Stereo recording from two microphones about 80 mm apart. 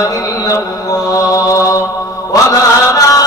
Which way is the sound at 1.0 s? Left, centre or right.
Left.